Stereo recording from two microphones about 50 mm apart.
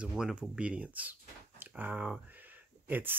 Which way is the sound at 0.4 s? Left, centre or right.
Right.